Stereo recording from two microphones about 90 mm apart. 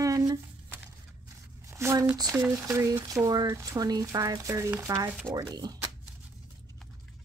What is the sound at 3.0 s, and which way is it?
Speech, 45° right (ahead or behind).